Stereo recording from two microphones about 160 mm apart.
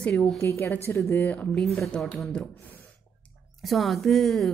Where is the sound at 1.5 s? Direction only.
Centre (ahead or behind).